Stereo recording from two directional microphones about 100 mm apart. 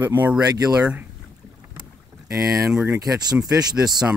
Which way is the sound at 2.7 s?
10° right (ahead or behind).